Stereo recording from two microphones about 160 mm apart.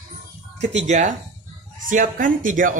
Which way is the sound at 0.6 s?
45° right (ahead or behind).